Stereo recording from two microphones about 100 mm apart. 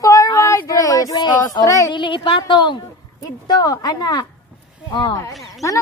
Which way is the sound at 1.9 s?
55° left (ahead or behind).